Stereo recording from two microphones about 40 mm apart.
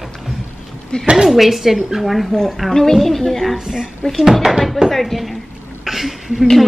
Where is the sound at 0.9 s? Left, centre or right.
Left.